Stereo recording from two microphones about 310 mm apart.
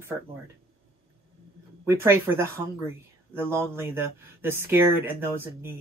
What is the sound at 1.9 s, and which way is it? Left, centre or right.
Speech, centre.